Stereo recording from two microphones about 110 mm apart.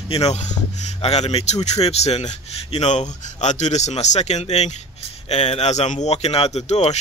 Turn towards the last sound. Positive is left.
turn(degrees=90)